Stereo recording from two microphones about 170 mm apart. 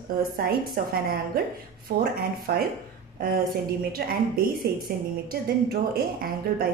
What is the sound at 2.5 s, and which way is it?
Speech, 65° right (ahead or behind).